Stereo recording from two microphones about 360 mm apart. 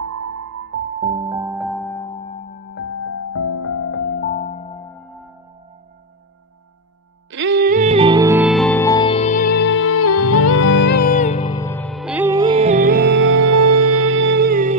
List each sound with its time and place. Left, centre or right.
0.0 s music: right; by 2.4 s centre
2.7 s music: left; by 5.2 s centre
7.2 s music: right